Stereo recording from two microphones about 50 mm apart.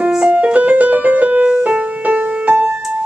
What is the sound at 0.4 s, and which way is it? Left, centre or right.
Music, right.